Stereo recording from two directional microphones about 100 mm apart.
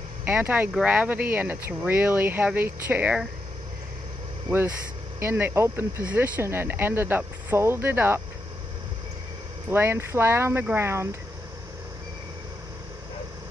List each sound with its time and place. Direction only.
0.2 s speech: 20° right (ahead or behind)
5.2 s speech: 25° right (ahead or behind)
9.7 s speech: 25° right (ahead or behind)